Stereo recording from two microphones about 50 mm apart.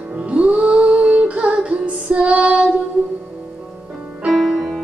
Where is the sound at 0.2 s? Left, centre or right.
Right.